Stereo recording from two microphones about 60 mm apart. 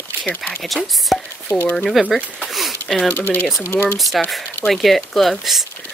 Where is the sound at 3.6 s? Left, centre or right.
Left.